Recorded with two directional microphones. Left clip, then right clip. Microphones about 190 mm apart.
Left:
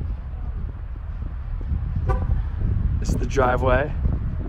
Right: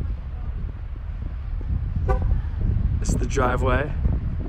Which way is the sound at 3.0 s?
10° left (ahead or behind).